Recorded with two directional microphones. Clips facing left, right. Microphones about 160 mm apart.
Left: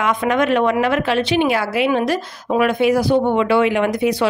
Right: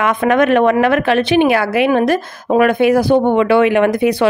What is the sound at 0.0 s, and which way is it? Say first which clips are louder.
A woman's voice: right 4 dB; 55° right (ahead or behind).